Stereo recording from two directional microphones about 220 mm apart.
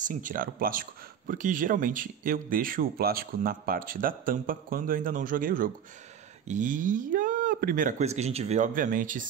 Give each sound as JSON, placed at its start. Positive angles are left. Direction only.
{"t": 0.0, "sound": "speech", "side_deg": -35}